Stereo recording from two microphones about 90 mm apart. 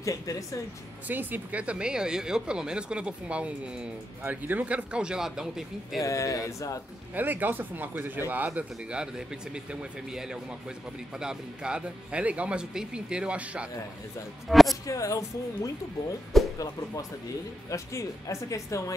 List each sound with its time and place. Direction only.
0.0 s speech: 40° left (ahead or behind)
1.0 s speech: 20° right (ahead or behind)
5.9 s speech: 35° left (ahead or behind)
7.2 s speech: 20° right (ahead or behind)
8.5 s speech: 10° right (ahead or behind)
14.5 s speech: centre (ahead or behind)
14.9 s speech: 40° left (ahead or behind)
17.6 s speech: 35° left (ahead or behind)